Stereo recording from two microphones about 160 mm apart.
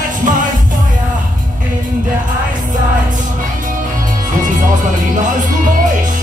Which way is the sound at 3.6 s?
55° right (ahead or behind).